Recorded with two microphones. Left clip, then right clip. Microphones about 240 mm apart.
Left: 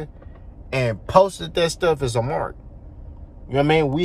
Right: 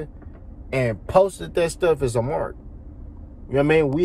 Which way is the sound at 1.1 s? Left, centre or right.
Left.